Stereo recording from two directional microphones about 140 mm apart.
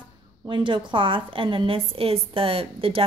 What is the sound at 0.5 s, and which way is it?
A woman's voice, 35° right (ahead or behind).